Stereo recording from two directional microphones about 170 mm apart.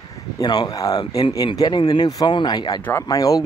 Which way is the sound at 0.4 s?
25° left (ahead or behind).